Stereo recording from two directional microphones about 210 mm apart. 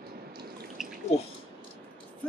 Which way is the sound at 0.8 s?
Centre (ahead or behind).